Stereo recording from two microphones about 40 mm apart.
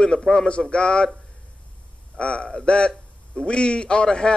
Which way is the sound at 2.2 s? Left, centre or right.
Left.